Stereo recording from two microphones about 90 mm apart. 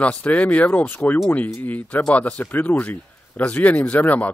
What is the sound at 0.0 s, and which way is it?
Speech, 15° left (ahead or behind).